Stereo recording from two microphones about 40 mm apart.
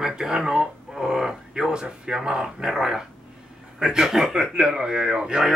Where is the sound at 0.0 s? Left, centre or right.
Centre.